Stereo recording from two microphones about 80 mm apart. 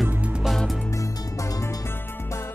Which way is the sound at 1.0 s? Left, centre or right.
Left.